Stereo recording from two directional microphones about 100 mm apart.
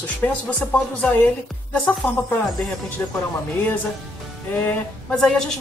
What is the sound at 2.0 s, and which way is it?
Speech, 15° left (ahead or behind).